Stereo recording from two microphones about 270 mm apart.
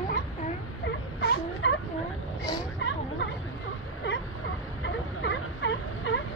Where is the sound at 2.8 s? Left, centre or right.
Left.